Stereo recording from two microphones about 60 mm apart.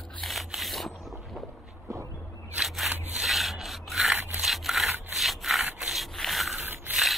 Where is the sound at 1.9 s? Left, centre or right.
Right.